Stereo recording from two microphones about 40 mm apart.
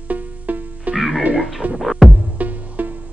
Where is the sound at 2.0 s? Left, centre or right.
Right.